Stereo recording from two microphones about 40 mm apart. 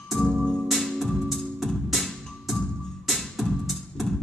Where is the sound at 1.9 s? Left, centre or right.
Centre.